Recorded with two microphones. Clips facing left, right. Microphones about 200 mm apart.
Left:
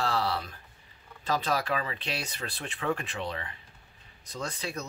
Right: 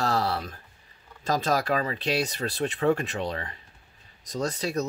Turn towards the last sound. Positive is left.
turn(degrees=-40)  # may be behind; listen again after turning